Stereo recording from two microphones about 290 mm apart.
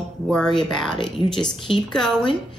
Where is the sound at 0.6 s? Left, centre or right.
Centre.